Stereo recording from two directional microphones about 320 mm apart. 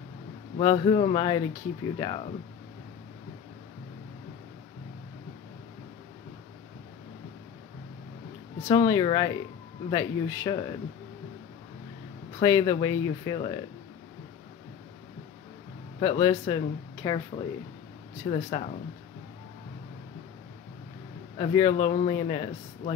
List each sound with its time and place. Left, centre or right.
0.6 s speech: centre
8.6 s speech: centre
12.4 s speech: centre
16.0 s speech: centre
18.3 s speech: centre
21.4 s speech: centre